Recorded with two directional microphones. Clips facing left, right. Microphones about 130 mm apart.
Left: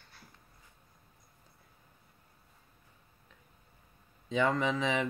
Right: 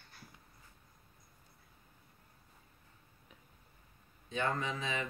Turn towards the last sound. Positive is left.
turn(degrees=90)